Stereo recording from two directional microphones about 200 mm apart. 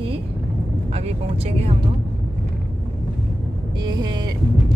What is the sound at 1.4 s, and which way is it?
Speech, 30° right (ahead or behind).